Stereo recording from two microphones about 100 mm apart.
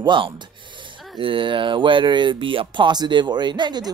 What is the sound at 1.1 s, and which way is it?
Speech, 60° right (ahead or behind).